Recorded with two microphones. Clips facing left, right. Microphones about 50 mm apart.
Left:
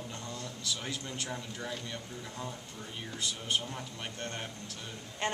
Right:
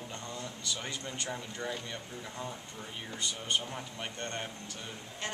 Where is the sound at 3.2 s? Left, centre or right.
Centre.